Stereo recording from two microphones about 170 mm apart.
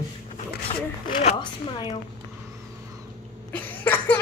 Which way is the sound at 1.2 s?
25° left (ahead or behind).